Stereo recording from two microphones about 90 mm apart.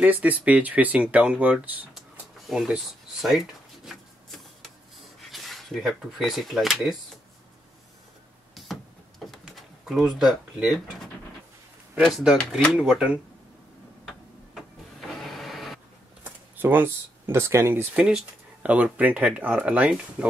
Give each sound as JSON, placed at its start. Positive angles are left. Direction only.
{"t": 0.0, "sound": "speech", "side_deg": -20}
{"t": 2.5, "sound": "a sound", "side_deg": -5}
{"t": 5.3, "sound": "speech", "side_deg": 0}
{"t": 8.6, "sound": "a sound", "side_deg": 0}
{"t": 9.6, "sound": "speech", "side_deg": 0}
{"t": 12.7, "sound": "speech", "side_deg": -10}
{"t": 14.0, "sound": "printer", "side_deg": 0}
{"t": 16.5, "sound": "speech", "side_deg": -25}
{"t": 17.9, "sound": "speech", "side_deg": -10}